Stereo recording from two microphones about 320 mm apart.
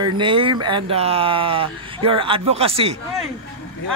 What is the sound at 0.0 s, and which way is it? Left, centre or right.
Speech, centre.